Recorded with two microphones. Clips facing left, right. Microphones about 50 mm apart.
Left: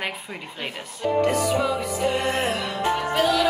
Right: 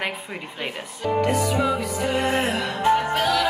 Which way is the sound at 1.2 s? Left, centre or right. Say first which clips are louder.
Left 1 dB; centre.